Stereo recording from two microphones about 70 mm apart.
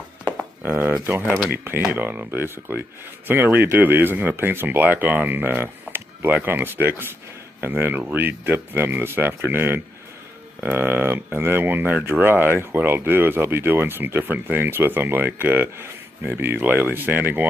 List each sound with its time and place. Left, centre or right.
0.6 s speech: right
0.9 s speech: right